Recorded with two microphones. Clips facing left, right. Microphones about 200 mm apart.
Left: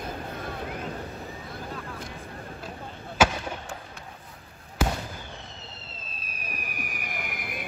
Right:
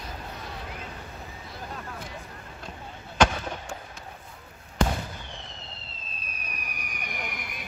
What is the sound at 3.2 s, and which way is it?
Fireworks, 5° left (ahead or behind).